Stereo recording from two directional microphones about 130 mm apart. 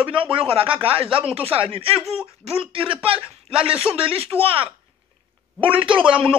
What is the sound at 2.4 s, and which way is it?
A man's voice, 45° right (ahead or behind).